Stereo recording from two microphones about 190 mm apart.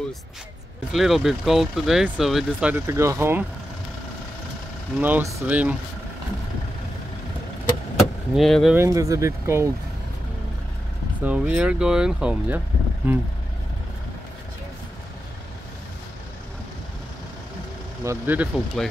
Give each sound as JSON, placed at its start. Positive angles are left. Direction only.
{"t": 0.9, "sound": "speech", "side_deg": 0}
{"t": 4.9, "sound": "speech", "side_deg": -10}
{"t": 8.4, "sound": "speech", "side_deg": 0}
{"t": 8.7, "sound": "speech", "side_deg": -15}
{"t": 11.2, "sound": "speech", "side_deg": -5}
{"t": 18.0, "sound": "speech", "side_deg": -10}